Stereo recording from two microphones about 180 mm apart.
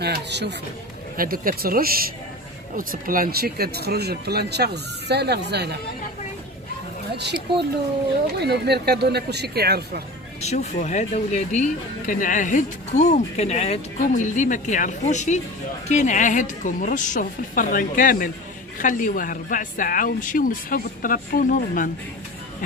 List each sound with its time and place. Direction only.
0.0 s speech: 70° right (ahead or behind)
1.1 s speech: 55° right (ahead or behind)
7.2 s speech: 70° right (ahead or behind)
10.4 s speech: 40° left (ahead or behind)